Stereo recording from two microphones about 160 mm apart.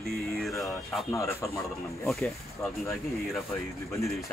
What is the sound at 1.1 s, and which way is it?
Speech, 20° left (ahead or behind).